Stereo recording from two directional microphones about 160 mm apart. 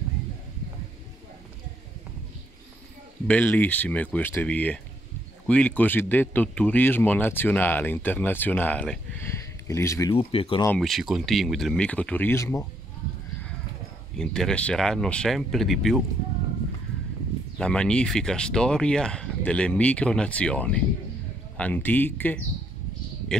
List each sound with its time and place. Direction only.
3.3 s speech: 10° left (ahead or behind)
10.1 s speech: 35° left (ahead or behind)
10.8 s speech: centre (ahead or behind); by 12.6 s 15° left (ahead or behind)
14.1 s speech: 5° left (ahead or behind)
17.6 s speech: 5° left (ahead or behind)